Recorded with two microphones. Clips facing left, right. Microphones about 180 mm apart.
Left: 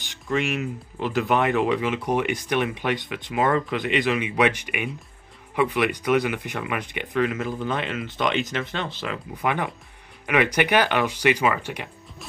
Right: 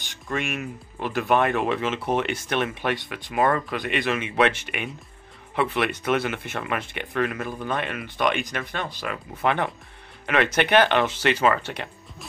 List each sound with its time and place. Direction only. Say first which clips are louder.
0.1 s speech: left 4 dB; 20° left (ahead or behind)
9.4 s speech: right 2 dB; 15° left (ahead or behind)